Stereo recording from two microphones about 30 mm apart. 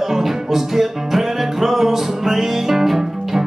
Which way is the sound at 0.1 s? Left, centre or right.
Centre.